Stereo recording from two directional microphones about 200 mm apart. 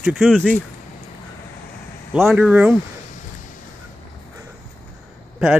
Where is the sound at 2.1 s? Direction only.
5° right (ahead or behind).